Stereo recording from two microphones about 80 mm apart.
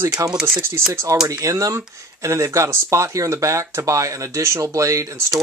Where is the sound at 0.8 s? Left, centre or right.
Right.